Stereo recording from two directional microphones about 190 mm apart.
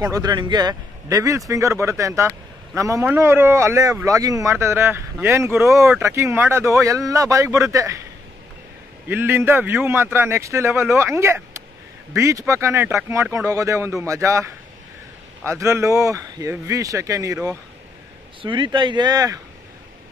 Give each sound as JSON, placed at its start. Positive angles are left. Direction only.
{"t": 0.0, "sound": "speech", "side_deg": -20}
{"t": 9.1, "sound": "speech", "side_deg": -10}